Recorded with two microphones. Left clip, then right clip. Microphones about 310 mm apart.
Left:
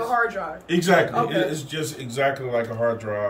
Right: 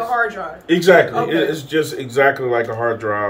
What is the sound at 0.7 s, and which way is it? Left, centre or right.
Speech, centre.